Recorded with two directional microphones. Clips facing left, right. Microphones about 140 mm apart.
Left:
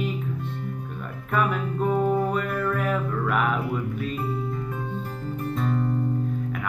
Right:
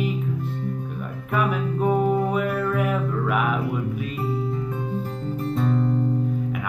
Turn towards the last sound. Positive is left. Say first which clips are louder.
# right 3 dB
turn(degrees=-20)  # may be behind; listen again after turning